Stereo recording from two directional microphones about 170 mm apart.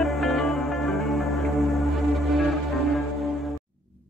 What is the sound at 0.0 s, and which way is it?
Music, centre (ahead or behind).